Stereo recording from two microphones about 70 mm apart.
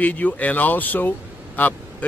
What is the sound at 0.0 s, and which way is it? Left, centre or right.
A man's voice, left.